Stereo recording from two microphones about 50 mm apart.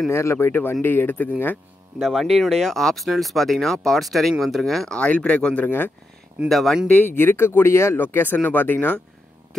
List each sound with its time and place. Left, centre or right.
0.1 s speech: left
2.0 s speech: centre
4.9 s speech: left
6.5 s speech: centre
6.9 s speech: left
8.0 s speech: left